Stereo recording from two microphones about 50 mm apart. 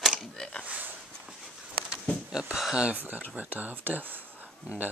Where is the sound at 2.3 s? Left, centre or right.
Centre.